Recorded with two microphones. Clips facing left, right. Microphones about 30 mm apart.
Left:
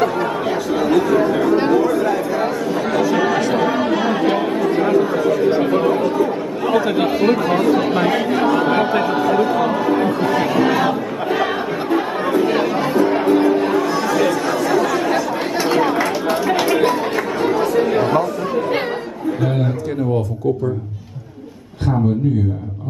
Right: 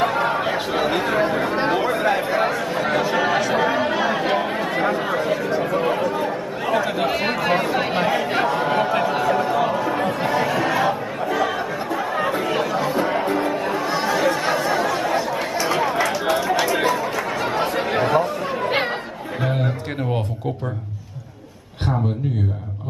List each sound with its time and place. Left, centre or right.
0.0 s chatter: right
2.4 s chatter: right
3.5 s chatter: centre
4.9 s speech: right
5.4 s speech: left
6.7 s a sound: centre
7.2 s speech: centre
9.1 s speech: centre
10.4 s a sound: centre
12.6 s chatter: centre
13.0 s music: left
13.7 s chatter: right
15.8 s run: centre
17.6 s speech: right